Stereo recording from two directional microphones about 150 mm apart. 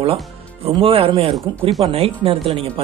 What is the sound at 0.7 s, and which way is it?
Speech, 35° right (ahead or behind).